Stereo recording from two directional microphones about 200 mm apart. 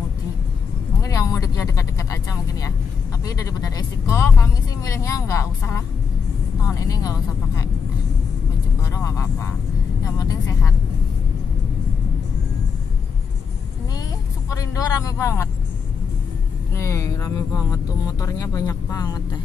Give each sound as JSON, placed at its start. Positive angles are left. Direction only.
{"t": 1.0, "sound": "vehicle", "side_deg": 15}
{"t": 3.3, "sound": "speech", "side_deg": 15}
{"t": 10.0, "sound": "speech", "side_deg": 15}
{"t": 14.5, "sound": "speech", "side_deg": 15}
{"t": 16.7, "sound": "speech", "side_deg": 15}